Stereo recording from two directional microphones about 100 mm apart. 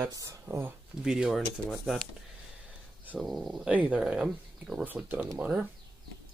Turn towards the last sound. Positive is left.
turn(degrees=-15)  # may be behind; listen again after turning